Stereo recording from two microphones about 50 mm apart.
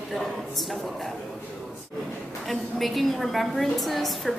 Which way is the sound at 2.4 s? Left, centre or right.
Centre.